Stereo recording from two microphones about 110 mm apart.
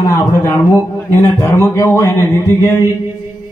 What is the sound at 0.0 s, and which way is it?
A man's voice, 30° left (ahead or behind).